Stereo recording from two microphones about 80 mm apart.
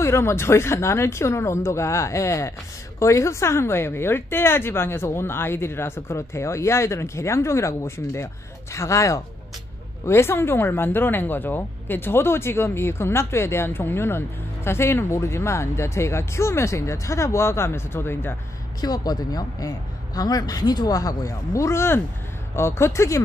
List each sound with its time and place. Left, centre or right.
0.0 s speech: left
18.8 s speech: left